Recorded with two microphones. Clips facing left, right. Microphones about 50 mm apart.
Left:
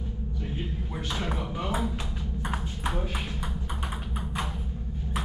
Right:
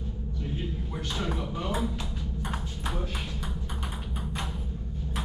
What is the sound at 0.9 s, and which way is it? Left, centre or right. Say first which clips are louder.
Speech: left 1 dB; centre.